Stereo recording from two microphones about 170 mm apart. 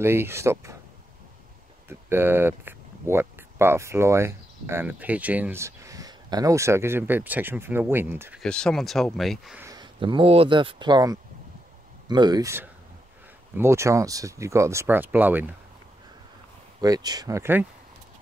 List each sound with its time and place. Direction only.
0.0 s speech: 15° right (ahead or behind)
1.9 s speech: 15° right (ahead or behind)
8.4 s speech: 5° left (ahead or behind)
9.6 s a sound: 20° right (ahead or behind)
9.9 s speech: 30° right (ahead or behind); by 15.5 s 10° right (ahead or behind)
16.8 s speech: 20° right (ahead or behind)